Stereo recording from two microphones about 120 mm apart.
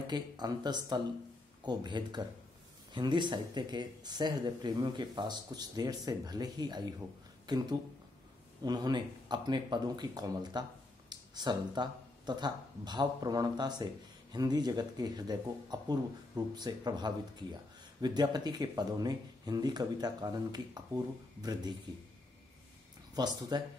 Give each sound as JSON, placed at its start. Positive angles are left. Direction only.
{"t": 0.0, "sound": "speech", "side_deg": -35}
{"t": 8.6, "sound": "speech", "side_deg": -35}
{"t": 23.1, "sound": "speech", "side_deg": -35}